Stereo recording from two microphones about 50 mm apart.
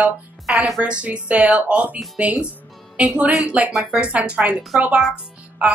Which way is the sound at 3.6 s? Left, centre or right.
Right.